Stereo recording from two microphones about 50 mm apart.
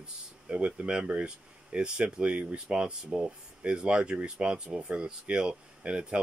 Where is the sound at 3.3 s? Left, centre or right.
Right.